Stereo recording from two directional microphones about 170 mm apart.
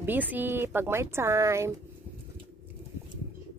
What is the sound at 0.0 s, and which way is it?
Speech, 10° right (ahead or behind).